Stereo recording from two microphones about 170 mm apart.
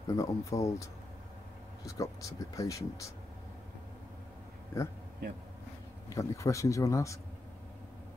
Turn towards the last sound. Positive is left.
turn(degrees=20)  # may be behind; listen again after turning